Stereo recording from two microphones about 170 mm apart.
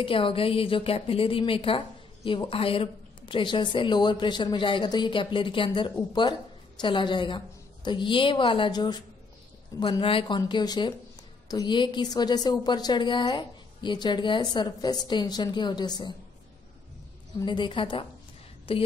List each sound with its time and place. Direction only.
0.0 s a woman's voice: 30° left (ahead or behind)
17.5 s a woman's voice: 30° left (ahead or behind)